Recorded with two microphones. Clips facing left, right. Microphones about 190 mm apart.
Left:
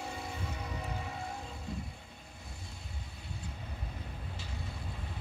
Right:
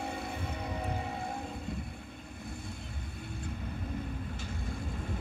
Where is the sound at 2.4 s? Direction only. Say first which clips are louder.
Right 9 dB; 55° right (ahead or behind).